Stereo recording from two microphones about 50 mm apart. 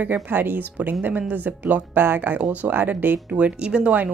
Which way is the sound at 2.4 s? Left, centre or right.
Right.